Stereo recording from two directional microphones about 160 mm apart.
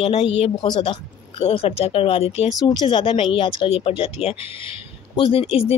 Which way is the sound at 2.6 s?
25° left (ahead or behind).